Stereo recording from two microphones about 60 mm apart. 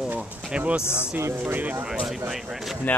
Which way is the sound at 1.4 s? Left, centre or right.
Right.